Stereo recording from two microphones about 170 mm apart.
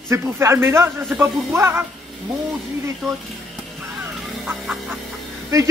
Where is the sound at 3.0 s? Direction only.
Centre (ahead or behind).